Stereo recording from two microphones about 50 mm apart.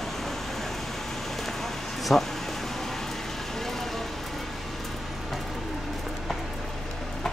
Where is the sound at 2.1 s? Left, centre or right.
Centre.